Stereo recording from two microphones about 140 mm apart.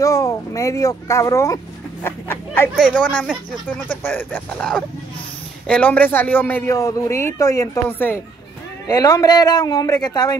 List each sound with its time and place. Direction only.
0.0 s speech: 25° left (ahead or behind)
2.7 s speech: 5° right (ahead or behind)
3.0 s a man's voice: 10° left (ahead or behind)